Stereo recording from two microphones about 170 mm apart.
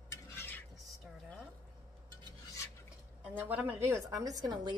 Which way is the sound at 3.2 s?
10° right (ahead or behind).